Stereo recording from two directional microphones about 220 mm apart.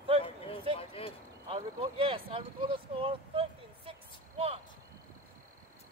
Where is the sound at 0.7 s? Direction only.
25° left (ahead or behind).